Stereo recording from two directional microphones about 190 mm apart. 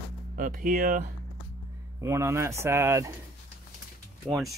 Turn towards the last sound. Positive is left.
turn(degrees=-5)  # may be behind; listen again after turning